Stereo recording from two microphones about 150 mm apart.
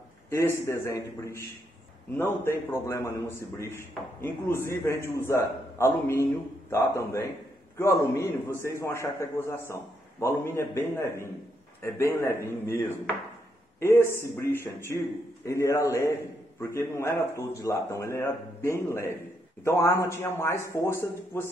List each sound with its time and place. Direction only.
0.3 s a man's voice: 20° left (ahead or behind)